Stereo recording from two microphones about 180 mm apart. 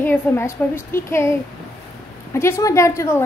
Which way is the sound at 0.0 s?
10° left (ahead or behind).